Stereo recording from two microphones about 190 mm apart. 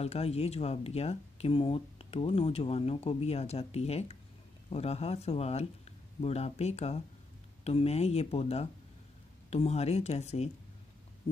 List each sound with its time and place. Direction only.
0.0 s speech: 35° left (ahead or behind)